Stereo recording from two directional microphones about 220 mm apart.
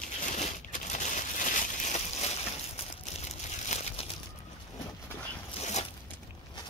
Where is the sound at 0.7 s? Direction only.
35° left (ahead or behind).